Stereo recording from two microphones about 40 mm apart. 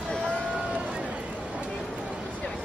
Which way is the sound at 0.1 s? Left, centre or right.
Left.